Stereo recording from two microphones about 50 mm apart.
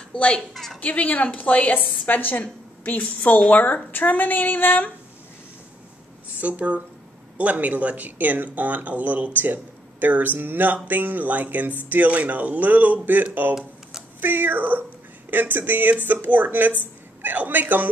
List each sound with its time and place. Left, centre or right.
0.1 s a woman's voice: left
0.7 s a woman's voice: left
6.4 s speech: right